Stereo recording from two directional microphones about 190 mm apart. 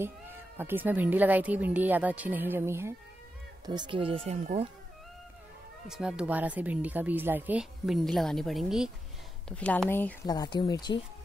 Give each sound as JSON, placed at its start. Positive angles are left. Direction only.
{"t": 0.0, "sound": "speech", "side_deg": -10}
{"t": 5.9, "sound": "speech", "side_deg": -5}